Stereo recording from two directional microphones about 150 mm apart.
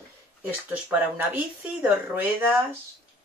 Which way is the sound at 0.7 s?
10° right (ahead or behind).